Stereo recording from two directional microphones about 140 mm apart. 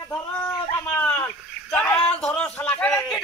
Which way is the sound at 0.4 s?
10° left (ahead or behind).